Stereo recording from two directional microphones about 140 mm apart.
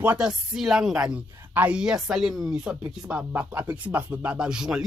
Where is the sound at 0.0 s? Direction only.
10° right (ahead or behind).